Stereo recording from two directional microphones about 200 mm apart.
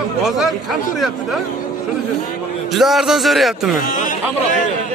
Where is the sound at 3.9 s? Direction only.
40° left (ahead or behind).